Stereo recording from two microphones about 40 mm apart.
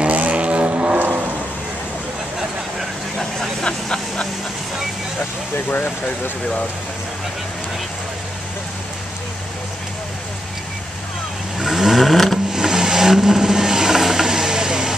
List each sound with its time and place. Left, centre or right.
0.0 s vehicle: right
0.7 s vehicle: right
3.6 s vehicle: left
5.7 s speech: left
11.6 s vehicle: centre
12.5 s vehicle: centre